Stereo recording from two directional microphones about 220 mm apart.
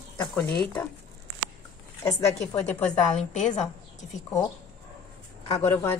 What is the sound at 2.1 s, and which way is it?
Speech, 15° left (ahead or behind).